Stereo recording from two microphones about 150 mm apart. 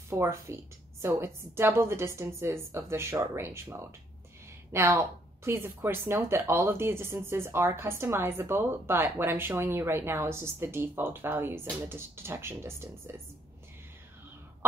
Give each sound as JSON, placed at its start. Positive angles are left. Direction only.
{"t": 0.1, "sound": "speech", "side_deg": -15}